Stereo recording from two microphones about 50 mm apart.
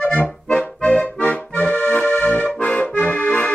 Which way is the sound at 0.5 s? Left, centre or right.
Centre.